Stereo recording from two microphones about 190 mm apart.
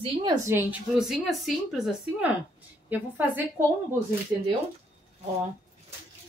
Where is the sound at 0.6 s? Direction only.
5° right (ahead or behind).